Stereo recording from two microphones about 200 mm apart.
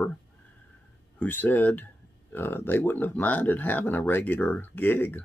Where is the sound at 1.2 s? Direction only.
10° left (ahead or behind).